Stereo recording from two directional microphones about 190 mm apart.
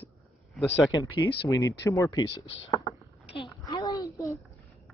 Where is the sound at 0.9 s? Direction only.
20° left (ahead or behind).